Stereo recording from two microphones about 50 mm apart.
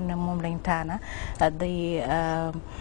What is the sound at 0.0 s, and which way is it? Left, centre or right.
A woman's voice, centre.